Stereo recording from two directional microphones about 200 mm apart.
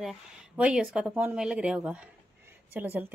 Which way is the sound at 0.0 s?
5° right (ahead or behind).